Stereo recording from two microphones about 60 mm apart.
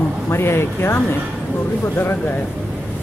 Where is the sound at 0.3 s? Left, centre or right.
Left.